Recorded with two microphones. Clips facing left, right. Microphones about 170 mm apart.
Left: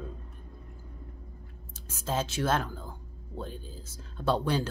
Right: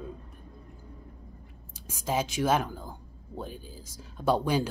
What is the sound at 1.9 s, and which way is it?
Speech, 15° right (ahead or behind).